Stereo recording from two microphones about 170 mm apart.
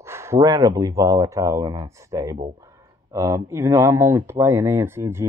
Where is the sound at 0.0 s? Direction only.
15° right (ahead or behind).